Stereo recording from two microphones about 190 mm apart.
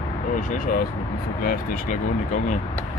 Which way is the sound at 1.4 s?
45° left (ahead or behind).